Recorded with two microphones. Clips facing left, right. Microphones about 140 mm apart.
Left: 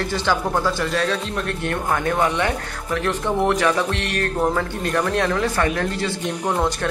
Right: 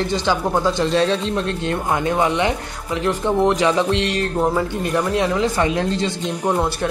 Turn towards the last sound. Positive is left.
turn(degrees=-10)  # may be behind; listen again after turning